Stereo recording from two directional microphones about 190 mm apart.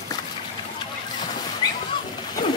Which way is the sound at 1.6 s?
20° left (ahead or behind).